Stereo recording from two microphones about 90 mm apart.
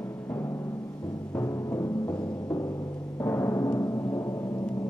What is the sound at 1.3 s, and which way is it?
Music, 20° left (ahead or behind).